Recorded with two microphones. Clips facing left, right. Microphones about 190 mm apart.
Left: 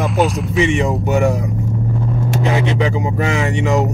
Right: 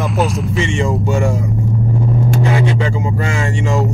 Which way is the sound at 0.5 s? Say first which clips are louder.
Left 3 dB; 20° left (ahead or behind).